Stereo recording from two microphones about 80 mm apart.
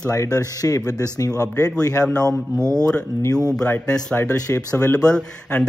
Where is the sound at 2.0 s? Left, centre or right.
Centre.